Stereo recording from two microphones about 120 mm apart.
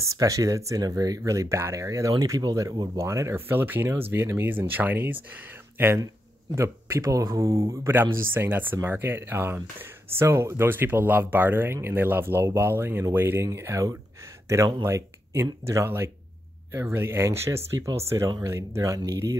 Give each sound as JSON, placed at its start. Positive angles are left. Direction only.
{"t": 0.0, "sound": "speech", "side_deg": -30}